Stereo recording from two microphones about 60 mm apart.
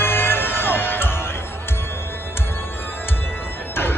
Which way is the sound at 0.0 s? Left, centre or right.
Left.